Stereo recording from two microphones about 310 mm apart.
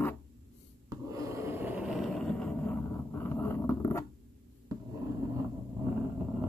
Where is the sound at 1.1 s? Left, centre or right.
Centre.